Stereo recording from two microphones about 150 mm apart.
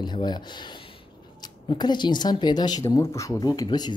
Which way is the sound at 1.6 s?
30° left (ahead or behind).